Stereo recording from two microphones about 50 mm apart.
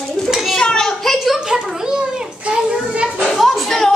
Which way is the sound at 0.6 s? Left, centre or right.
Centre.